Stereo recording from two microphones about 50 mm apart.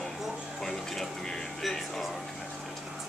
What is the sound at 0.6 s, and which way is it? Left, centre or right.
Music, centre.